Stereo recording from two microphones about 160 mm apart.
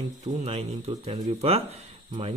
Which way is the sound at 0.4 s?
40° right (ahead or behind).